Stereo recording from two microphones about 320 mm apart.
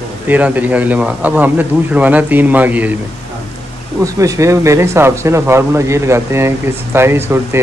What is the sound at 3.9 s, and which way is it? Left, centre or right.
Speech, centre.